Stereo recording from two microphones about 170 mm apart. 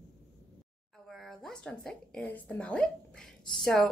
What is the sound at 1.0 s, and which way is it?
A woman's voice, centre (ahead or behind).